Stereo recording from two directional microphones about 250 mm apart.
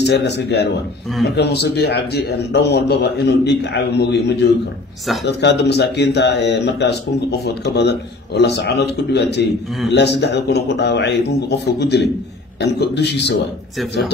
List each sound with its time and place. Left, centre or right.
0.0 s a man's voice: left